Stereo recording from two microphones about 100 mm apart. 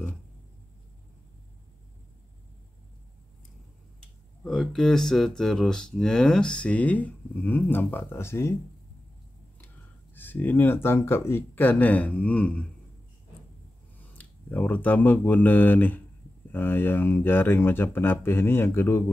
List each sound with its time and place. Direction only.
4.0 s speech: 5° left (ahead or behind); by 8.5 s 25° left (ahead or behind)
10.1 s speech: 20° left (ahead or behind)
14.1 s speech: 15° left (ahead or behind)